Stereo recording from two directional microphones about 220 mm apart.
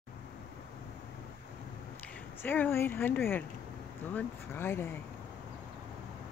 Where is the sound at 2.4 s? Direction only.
10° left (ahead or behind).